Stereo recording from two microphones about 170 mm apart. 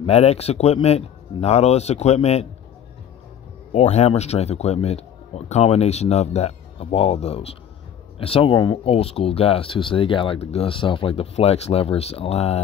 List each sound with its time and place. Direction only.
0.0 s speech: 40° left (ahead or behind)
3.7 s speech: 40° left (ahead or behind)